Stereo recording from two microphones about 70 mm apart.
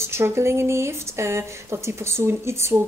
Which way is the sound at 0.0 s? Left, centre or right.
Right.